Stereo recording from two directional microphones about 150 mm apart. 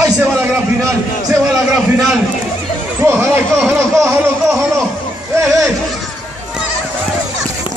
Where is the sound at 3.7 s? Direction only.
20° right (ahead or behind).